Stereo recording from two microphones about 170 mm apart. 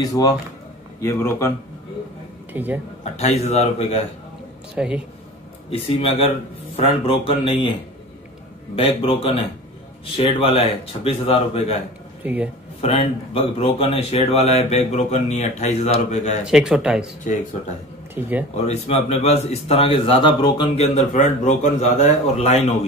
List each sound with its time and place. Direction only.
0.0 s speech: 20° left (ahead or behind)
2.5 s speech: 10° right (ahead or behind)
3.0 s speech: 40° left (ahead or behind)
4.7 s speech: 5° right (ahead or behind)
5.7 s speech: 35° left (ahead or behind)
8.7 s speech: 30° left (ahead or behind)
12.2 s speech: 10° right (ahead or behind)
12.8 s speech: 35° left (ahead or behind)
16.4 s speech: 5° right (ahead or behind)
18.5 s speech: 40° left (ahead or behind)
20.7 s speech: 40° left (ahead or behind)